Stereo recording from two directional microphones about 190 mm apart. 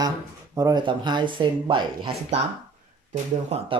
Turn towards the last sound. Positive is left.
turn(degrees=-35)  # may be behind; listen again after turning